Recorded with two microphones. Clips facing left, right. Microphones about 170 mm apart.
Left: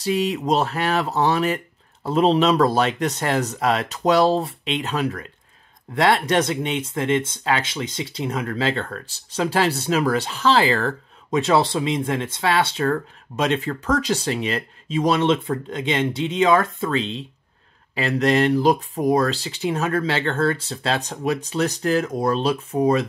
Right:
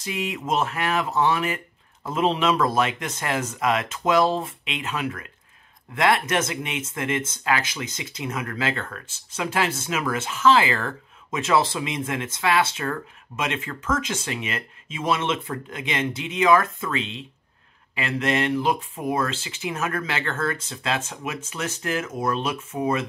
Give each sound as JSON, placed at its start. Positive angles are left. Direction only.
{"t": 0.0, "sound": "speech", "side_deg": 35}